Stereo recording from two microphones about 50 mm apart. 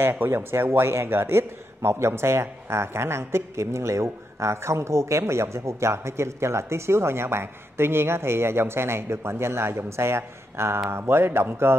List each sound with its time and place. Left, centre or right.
0.0 s a man's voice: right